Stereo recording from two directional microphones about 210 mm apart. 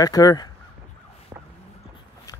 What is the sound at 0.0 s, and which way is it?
Speech, 15° left (ahead or behind).